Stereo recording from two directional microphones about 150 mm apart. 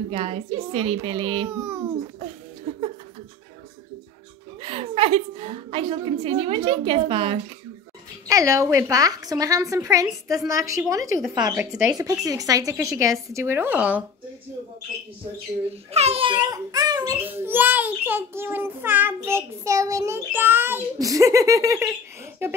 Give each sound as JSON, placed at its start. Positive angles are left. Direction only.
{"t": 0.1, "sound": "a woman's voice", "side_deg": -40}
{"t": 1.5, "sound": "child singing", "side_deg": -15}
{"t": 2.7, "sound": "laughter", "side_deg": -50}
{"t": 4.6, "sound": "a woman's voice", "side_deg": -40}
{"t": 8.3, "sound": "a child's voice", "side_deg": -20}
{"t": 11.5, "sound": "child singing", "side_deg": -15}
{"t": 11.9, "sound": "a child's voice", "side_deg": -20}
{"t": 12.7, "sound": "child singing", "side_deg": -15}
{"t": 15.9, "sound": "a child's voice", "side_deg": -45}
{"t": 17.4, "sound": "child singing", "side_deg": -15}
{"t": 19.1, "sound": "a child's voice", "side_deg": -20}